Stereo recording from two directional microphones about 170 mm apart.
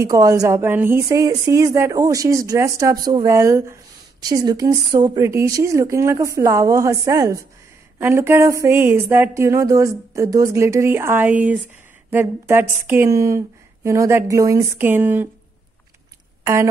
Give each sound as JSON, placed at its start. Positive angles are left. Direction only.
{"t": 0.0, "sound": "speech", "side_deg": -20}